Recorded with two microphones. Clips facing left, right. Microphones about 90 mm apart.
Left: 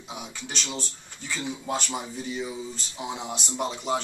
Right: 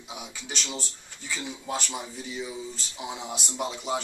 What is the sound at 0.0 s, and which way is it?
Speech, 5° right (ahead or behind).